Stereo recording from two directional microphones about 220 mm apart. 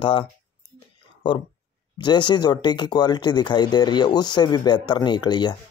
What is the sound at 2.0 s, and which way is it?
Speech, 20° left (ahead or behind).